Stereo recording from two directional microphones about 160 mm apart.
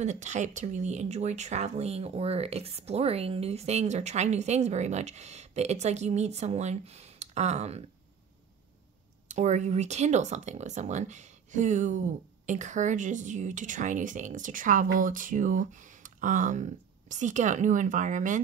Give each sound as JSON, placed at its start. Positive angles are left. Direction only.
{"t": 0.0, "sound": "speech", "side_deg": -50}
{"t": 9.3, "sound": "speech", "side_deg": -45}